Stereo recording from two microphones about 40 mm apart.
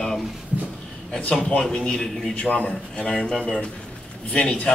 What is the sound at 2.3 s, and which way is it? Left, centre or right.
A man's voice, left.